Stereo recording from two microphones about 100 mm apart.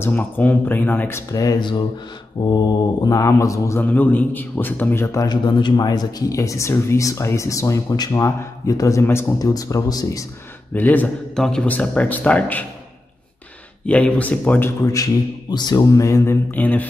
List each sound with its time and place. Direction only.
0.0 s speech: 15° left (ahead or behind)
1.3 s speech: 35° left (ahead or behind)
2.4 s mantra: 55° left (ahead or behind)
3.1 s speech: 35° left (ahead or behind)
3.8 s a man's voice: 15° left (ahead or behind)
5.3 s speech: 50° left (ahead or behind)
10.7 s speech: 15° left (ahead or behind)
11.3 s speech: 5° left (ahead or behind)
13.8 s speech: 10° left (ahead or behind)
14.8 s a man's voice: 35° left (ahead or behind); by 16.8 s 20° left (ahead or behind)